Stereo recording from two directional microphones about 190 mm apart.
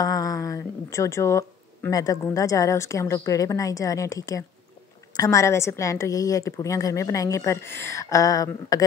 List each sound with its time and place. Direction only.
0.0 s a woman's voice: 20° left (ahead or behind)